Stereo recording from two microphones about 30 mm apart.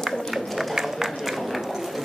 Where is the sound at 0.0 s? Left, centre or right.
Centre.